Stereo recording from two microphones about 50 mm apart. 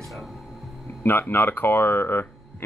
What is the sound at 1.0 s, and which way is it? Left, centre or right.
Speech, left.